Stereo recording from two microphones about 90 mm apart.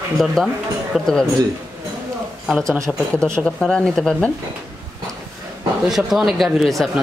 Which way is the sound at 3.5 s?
5° left (ahead or behind).